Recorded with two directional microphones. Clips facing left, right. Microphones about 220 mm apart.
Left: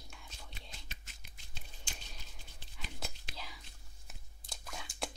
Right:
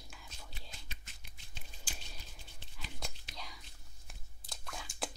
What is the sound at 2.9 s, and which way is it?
Whispering, 5° left (ahead or behind).